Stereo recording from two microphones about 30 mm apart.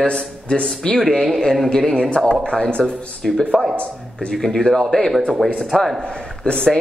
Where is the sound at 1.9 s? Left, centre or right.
Left.